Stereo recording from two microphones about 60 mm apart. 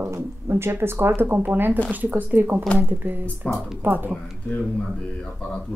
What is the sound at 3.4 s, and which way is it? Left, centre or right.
Speech, left.